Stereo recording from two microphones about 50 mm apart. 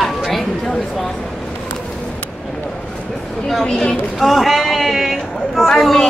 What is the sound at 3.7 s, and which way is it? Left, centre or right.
Speech, centre.